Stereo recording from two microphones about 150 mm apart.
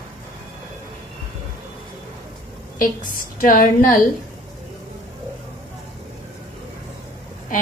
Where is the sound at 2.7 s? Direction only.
65° left (ahead or behind).